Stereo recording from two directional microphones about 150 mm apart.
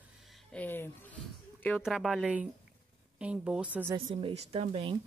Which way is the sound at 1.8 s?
Centre (ahead or behind).